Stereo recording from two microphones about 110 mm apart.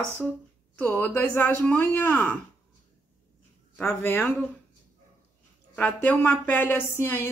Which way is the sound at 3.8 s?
20° left (ahead or behind).